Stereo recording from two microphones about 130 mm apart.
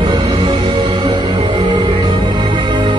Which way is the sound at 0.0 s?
35° right (ahead or behind).